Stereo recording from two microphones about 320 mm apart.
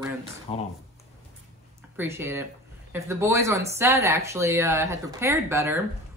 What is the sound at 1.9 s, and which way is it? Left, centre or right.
Speech, centre.